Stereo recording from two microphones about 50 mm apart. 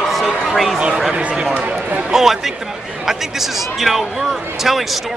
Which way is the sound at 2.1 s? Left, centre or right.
Centre.